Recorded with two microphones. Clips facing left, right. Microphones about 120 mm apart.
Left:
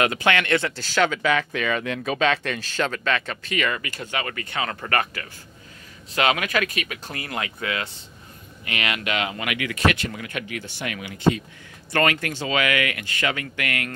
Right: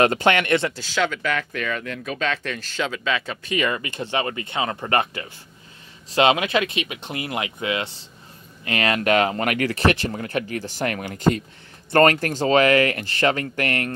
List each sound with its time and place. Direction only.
0.0 s speech: 35° right (ahead or behind)
0.3 s speech: 20° right (ahead or behind)
1.0 s speech: 90° left
2.7 s speech: 5° right (ahead or behind)
3.5 s speech: 25° right (ahead or behind)
8.6 s speech: 35° right (ahead or behind)
10.8 s speech: 45° right (ahead or behind)